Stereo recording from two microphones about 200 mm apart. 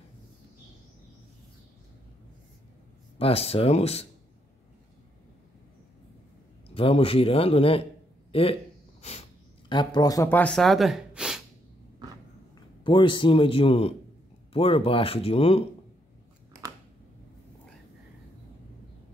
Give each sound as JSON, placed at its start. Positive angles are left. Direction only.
{"t": 3.2, "sound": "speech", "side_deg": 30}
{"t": 6.7, "sound": "speech", "side_deg": 30}
{"t": 9.7, "sound": "speech", "side_deg": 20}
{"t": 12.5, "sound": "a man's voice", "side_deg": 25}